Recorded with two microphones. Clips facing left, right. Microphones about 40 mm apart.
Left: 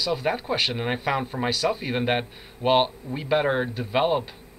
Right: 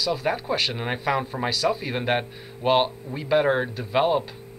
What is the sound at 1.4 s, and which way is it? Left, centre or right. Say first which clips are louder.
Speech: even; centre.